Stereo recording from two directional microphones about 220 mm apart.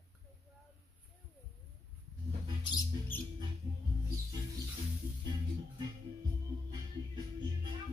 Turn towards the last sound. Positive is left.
turn(degrees=-20)  # may be behind; listen again after turning